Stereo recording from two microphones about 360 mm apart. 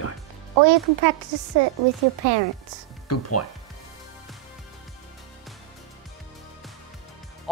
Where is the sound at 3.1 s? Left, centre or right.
Left.